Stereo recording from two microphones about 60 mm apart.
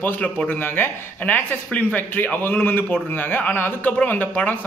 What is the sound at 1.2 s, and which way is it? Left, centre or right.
A man's voice, left.